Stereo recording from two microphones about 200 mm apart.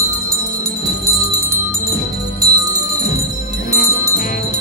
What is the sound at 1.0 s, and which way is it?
Bell, 15° right (ahead or behind).